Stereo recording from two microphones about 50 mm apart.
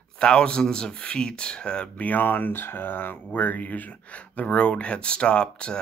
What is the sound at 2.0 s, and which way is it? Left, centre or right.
Speech, left.